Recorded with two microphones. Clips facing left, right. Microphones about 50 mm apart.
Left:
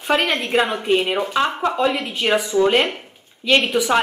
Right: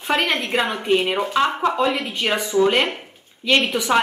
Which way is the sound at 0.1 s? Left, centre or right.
Centre.